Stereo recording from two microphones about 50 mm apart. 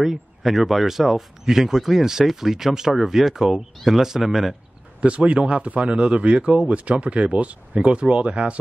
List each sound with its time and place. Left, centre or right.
0.0 s speech: centre
5.0 s speech: right